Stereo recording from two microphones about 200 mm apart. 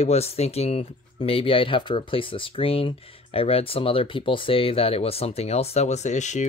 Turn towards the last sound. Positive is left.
turn(degrees=35)  # may be behind; listen again after turning